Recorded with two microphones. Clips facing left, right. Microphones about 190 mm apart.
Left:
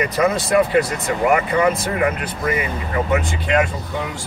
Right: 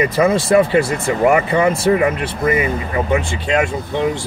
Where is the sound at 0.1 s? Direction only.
30° right (ahead or behind).